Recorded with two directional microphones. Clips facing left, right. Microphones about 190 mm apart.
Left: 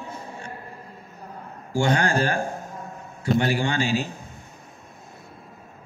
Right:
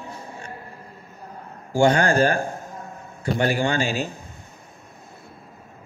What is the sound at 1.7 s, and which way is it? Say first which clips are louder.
A man's voice: right 4 dB; 50° right (ahead or behind).